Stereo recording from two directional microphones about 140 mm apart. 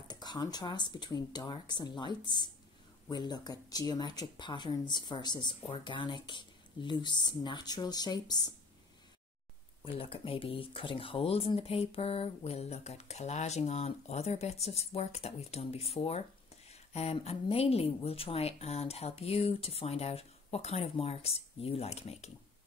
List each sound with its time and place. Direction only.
0.1 s speech: 30° left (ahead or behind)
9.9 s speech: 40° left (ahead or behind)